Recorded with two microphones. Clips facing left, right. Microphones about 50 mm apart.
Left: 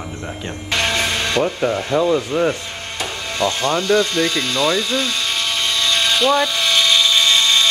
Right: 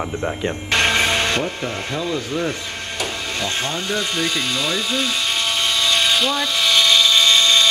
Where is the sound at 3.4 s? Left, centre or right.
Left.